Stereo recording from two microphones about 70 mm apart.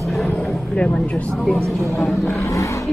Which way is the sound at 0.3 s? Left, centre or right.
Left.